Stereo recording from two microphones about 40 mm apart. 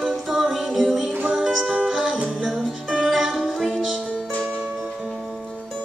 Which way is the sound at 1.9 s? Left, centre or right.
Centre.